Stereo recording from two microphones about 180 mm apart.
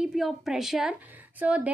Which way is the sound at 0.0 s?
5° right (ahead or behind).